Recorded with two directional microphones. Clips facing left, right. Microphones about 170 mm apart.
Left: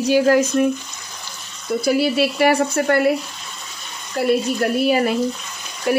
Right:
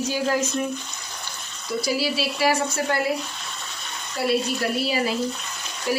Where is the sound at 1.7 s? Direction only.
55° left (ahead or behind).